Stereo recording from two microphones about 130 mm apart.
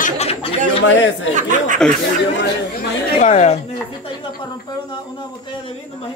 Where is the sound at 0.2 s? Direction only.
50° left (ahead or behind).